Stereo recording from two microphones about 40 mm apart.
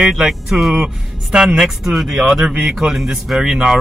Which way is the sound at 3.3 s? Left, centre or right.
Centre.